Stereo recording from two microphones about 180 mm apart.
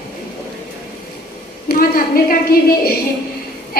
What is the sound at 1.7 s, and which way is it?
Speech, 50° left (ahead or behind).